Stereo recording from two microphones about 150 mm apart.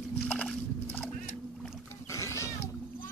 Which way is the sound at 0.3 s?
10° left (ahead or behind).